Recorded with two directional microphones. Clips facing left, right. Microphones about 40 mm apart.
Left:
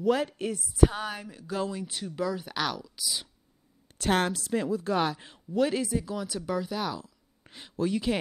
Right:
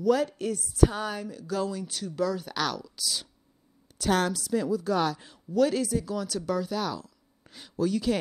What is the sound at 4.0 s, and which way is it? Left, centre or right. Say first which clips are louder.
Speech: right 1 dB; left.